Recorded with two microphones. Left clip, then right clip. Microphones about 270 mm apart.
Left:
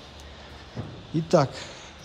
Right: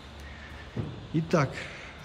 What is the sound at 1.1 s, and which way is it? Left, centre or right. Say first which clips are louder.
Speech: left 6 dB; centre.